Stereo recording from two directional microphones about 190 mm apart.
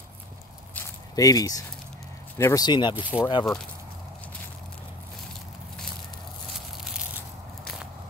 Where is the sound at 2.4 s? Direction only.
20° left (ahead or behind).